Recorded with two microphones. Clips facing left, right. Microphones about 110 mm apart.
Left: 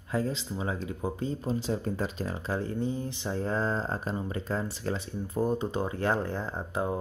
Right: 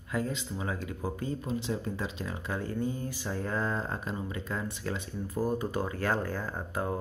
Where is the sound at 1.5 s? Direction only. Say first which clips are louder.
Left 3 dB; 40° left (ahead or behind).